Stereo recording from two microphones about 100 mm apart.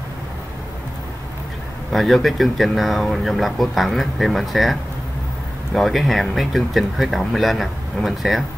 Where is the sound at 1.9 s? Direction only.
Centre (ahead or behind).